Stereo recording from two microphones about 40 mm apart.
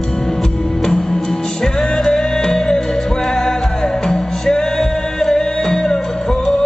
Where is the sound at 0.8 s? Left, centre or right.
Centre.